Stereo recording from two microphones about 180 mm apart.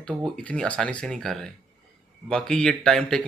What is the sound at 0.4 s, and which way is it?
Speech, 5° left (ahead or behind).